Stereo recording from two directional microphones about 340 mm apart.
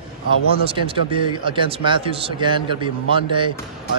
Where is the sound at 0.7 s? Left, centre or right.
Centre.